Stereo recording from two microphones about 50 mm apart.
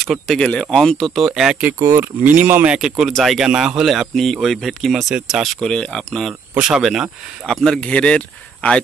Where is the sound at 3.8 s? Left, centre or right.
Centre.